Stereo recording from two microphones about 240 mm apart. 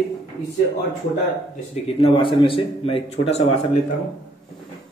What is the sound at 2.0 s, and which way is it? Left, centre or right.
A man's voice, left.